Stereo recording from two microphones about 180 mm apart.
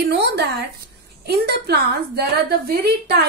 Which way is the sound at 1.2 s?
60° right (ahead or behind).